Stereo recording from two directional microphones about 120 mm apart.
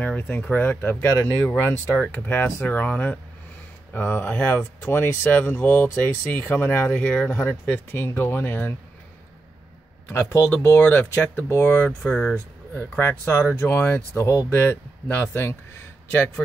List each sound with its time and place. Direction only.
0.0 s speech: 15° left (ahead or behind)
10.1 s speech: 20° left (ahead or behind)